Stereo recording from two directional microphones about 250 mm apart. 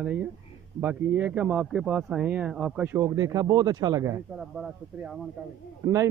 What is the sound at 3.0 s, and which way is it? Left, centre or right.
Speech, centre.